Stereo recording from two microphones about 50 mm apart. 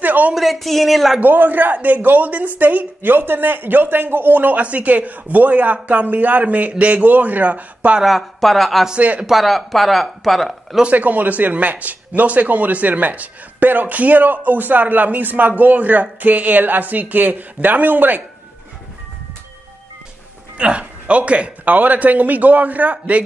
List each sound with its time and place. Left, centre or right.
0.0 s a sound: right
0.3 s speech: centre
1.2 s speech: right
8.0 s speech: centre
8.9 s speech: right
9.2 s speech: centre
10.8 s speech: right
20.5 s speech: right